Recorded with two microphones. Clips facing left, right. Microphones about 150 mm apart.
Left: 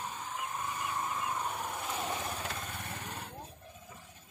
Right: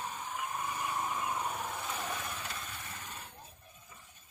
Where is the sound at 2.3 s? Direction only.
50° left (ahead or behind).